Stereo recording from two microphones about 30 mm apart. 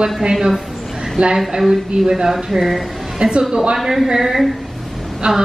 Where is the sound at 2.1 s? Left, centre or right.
Centre.